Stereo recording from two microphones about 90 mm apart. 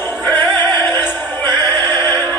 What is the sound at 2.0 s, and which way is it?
Music, 25° left (ahead or behind).